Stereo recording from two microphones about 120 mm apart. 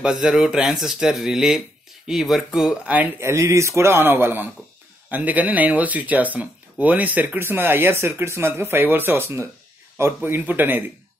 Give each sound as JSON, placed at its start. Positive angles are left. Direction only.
{"t": 0.0, "sound": "speech", "side_deg": -5}